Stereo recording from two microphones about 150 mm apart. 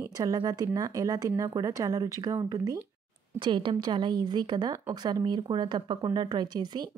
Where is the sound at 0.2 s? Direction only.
25° right (ahead or behind).